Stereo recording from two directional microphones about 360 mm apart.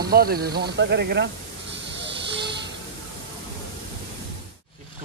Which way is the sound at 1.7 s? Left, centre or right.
Right.